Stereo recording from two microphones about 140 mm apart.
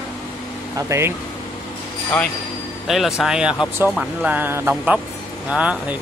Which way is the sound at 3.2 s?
5° right (ahead or behind).